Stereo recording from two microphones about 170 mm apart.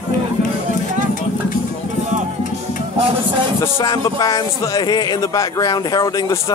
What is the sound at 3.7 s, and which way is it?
Speech, 25° left (ahead or behind).